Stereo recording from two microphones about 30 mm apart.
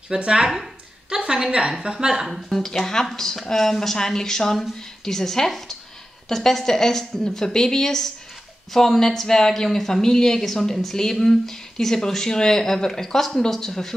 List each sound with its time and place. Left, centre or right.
0.1 s a woman's voice: right
2.8 s speech: centre